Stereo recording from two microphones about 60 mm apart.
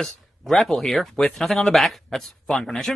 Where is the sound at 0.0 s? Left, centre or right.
Centre.